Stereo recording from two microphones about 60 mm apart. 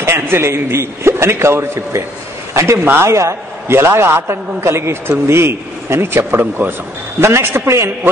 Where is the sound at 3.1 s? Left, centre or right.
Right.